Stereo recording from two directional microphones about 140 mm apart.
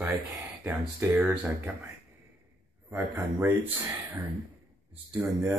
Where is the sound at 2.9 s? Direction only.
15° right (ahead or behind).